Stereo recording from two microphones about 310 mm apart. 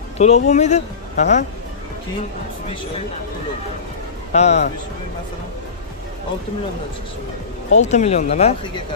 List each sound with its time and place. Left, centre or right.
0.2 s speech: left
4.3 s speech: left
7.7 s speech: left